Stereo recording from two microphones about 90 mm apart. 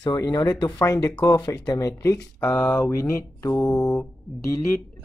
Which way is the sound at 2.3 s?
25° left (ahead or behind).